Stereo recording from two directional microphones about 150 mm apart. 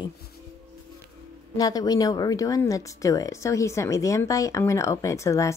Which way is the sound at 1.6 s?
25° left (ahead or behind).